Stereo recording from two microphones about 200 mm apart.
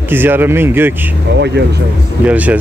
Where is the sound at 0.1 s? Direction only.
10° right (ahead or behind).